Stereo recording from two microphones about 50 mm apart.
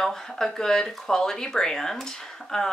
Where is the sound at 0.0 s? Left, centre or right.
Centre.